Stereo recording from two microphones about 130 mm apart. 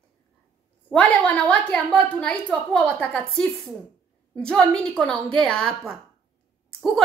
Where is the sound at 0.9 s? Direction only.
10° left (ahead or behind).